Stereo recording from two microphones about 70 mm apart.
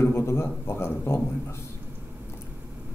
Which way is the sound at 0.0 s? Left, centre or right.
Left.